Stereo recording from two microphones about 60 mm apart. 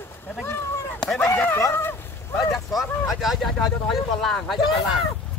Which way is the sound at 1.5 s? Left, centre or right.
Left.